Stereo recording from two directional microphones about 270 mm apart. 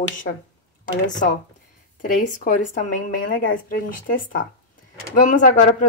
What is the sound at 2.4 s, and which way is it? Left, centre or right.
Speech, left.